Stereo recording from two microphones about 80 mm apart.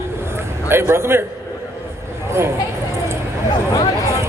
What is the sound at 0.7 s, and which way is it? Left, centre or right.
Speech, right.